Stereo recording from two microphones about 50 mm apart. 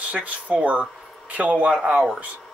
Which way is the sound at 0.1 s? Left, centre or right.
Right.